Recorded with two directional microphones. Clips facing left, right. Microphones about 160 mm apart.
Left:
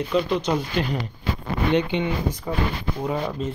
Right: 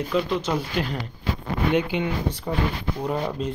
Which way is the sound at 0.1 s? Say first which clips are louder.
Left 2 dB; centre (ahead or behind).